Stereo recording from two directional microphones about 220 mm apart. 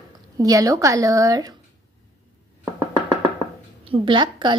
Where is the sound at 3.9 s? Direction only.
20° right (ahead or behind).